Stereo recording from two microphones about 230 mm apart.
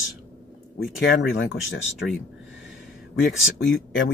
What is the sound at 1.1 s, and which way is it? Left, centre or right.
Speech, left.